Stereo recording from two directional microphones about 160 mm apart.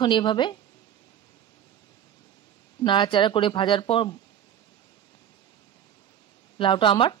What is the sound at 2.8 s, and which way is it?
Speech, 30° left (ahead or behind).